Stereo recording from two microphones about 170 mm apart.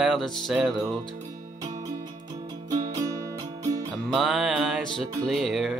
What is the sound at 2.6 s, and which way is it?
Music, 20° right (ahead or behind).